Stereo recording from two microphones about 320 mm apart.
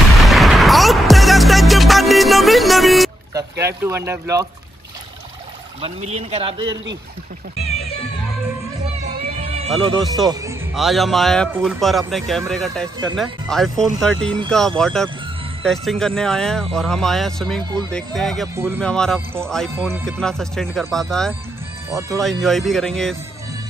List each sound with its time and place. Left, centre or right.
0.2 s music: centre
3.3 s speech: centre
5.8 s speech: centre
9.4 s music: centre
9.7 s speech: centre